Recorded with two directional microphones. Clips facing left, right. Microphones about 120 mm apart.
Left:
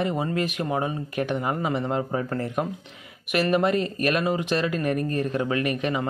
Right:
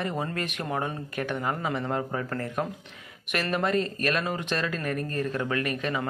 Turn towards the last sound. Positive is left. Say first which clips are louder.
# left 4 dB
turn(degrees=15)  # may be behind; listen again after turning